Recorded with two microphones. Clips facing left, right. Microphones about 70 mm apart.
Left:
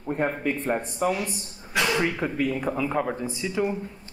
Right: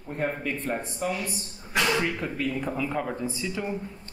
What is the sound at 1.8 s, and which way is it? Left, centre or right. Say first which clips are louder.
Speech: left 2 dB; centre.